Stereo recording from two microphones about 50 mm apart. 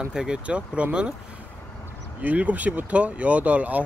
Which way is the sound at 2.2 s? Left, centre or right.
Right.